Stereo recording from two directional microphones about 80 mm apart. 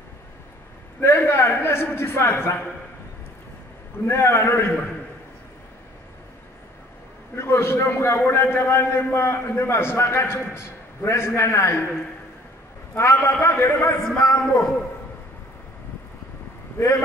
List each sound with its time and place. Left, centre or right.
1.0 s a man's voice: left
4.0 s a man's voice: left
7.3 s a man's voice: left
14.1 s speech: left